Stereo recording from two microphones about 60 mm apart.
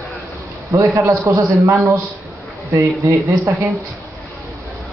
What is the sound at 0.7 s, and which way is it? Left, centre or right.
A man's voice, right.